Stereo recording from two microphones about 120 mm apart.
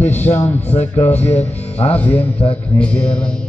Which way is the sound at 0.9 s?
15° left (ahead or behind).